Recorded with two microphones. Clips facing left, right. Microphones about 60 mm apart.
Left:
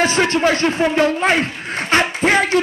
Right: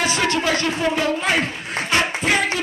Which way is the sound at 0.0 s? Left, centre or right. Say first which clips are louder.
Left 5 dB; left.